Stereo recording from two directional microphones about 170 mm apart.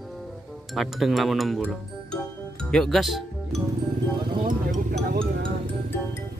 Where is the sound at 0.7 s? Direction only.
Centre (ahead or behind).